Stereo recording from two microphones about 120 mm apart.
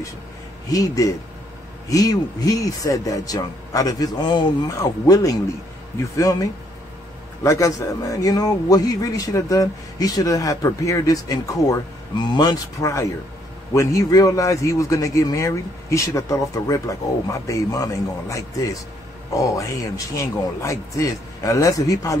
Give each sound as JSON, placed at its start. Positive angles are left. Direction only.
{"t": 0.7, "sound": "a man's voice", "side_deg": 30}
{"t": 12.8, "sound": "a man's voice", "side_deg": 25}